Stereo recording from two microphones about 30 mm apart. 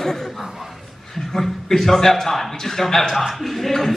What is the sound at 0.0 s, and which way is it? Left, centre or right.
A man's voice, centre.